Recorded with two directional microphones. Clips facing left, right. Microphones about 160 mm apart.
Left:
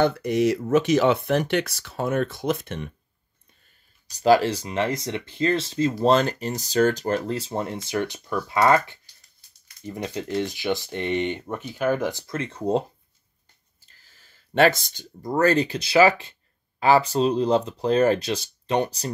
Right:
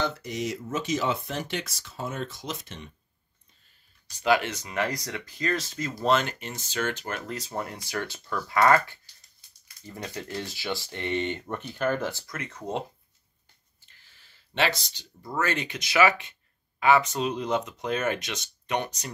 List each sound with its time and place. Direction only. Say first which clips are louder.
0.0 s speech: left 10 dB; 60° left (ahead or behind)
4.1 s speech: left 7 dB; 35° left (ahead or behind); by 12.4 s 20° left (ahead or behind)
12.4 s speech: left 11 dB; 30° left (ahead or behind)